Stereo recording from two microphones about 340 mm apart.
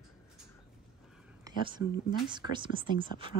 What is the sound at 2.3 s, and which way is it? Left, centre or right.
Speech, centre.